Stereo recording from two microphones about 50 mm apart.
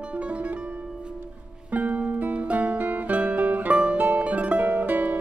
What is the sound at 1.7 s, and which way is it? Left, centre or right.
Music, right.